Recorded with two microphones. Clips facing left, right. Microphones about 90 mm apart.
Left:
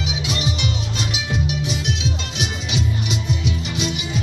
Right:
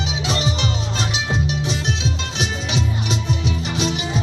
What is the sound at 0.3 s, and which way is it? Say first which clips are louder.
Music: right 3 dB; 35° right (ahead or behind).